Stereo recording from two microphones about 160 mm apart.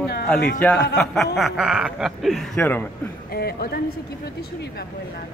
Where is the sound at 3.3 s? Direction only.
75° left (ahead or behind).